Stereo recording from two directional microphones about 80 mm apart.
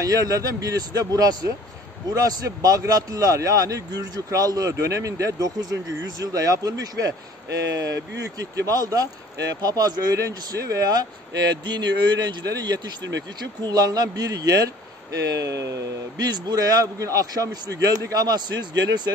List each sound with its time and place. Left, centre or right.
0.0 s a man's voice: right
16.3 s speech: right